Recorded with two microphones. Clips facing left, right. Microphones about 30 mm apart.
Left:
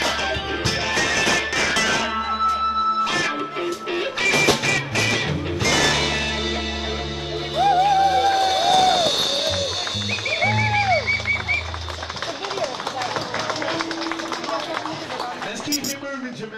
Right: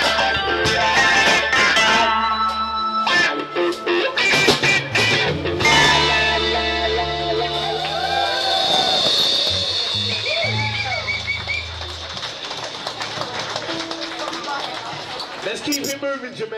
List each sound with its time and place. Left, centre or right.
0.0 s music: right
0.8 s music: right
2.4 s music: right
5.6 s music: right